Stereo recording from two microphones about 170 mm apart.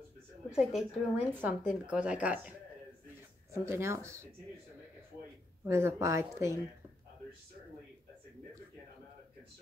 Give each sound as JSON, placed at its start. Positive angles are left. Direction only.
{"t": 0.5, "sound": "a woman's voice", "side_deg": -5}
{"t": 3.5, "sound": "a woman's voice", "side_deg": -15}
{"t": 5.7, "sound": "a woman's voice", "side_deg": -15}